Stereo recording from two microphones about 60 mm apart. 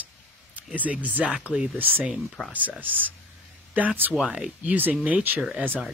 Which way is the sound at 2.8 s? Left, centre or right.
Right.